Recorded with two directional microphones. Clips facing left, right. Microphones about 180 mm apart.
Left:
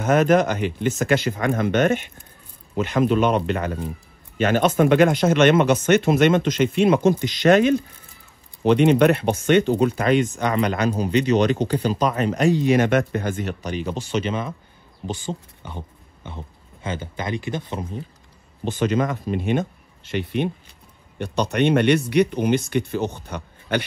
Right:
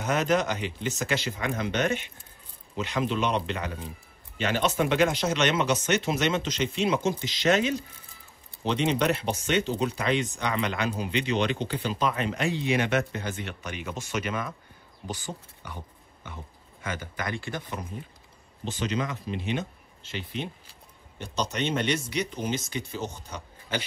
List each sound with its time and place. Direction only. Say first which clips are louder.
0.0 s speech: left 8 dB; 50° left (ahead or behind); by 17.7 s 20° left (ahead or behind)
18.6 s speech: left 8 dB; 55° left (ahead or behind)